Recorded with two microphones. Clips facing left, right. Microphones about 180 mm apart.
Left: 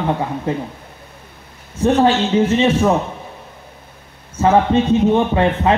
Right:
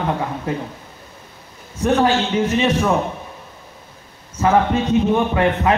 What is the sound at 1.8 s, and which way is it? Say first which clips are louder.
A man's voice: left 3 dB; 30° left (ahead or behind).